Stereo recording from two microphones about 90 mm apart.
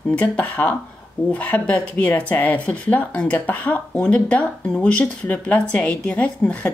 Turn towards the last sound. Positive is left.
turn(degrees=15)  # may be behind; listen again after turning